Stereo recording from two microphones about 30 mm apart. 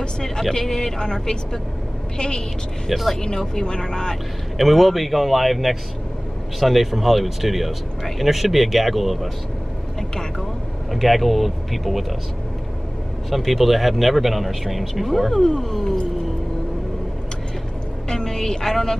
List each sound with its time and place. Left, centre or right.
0.4 s speech: centre
4.6 s speech: centre
10.9 s speech: centre
13.3 s speech: centre
15.3 s speech: centre
18.0 s speech: centre